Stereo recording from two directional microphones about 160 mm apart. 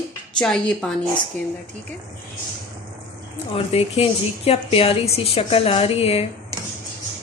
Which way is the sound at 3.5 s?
35° left (ahead or behind).